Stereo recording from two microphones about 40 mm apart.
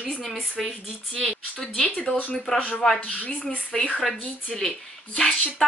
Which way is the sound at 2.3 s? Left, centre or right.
Centre.